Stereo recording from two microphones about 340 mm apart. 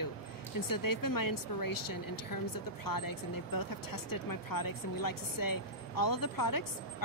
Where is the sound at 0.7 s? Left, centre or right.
Left.